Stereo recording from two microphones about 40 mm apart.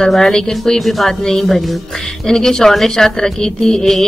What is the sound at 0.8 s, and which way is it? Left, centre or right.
A woman's voice, centre.